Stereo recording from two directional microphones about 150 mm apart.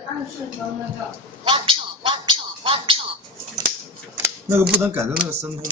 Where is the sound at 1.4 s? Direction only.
35° right (ahead or behind).